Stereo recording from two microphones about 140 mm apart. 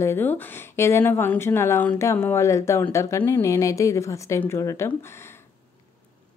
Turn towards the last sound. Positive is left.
turn(degrees=15)  # may be behind; listen again after turning